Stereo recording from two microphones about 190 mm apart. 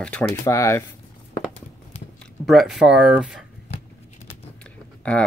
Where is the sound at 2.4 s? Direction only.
Centre (ahead or behind).